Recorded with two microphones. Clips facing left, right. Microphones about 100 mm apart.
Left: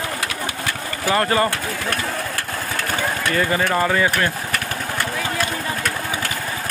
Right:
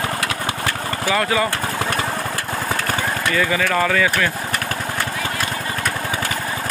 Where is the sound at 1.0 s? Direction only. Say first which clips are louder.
Left 1 dB; 40° left (ahead or behind).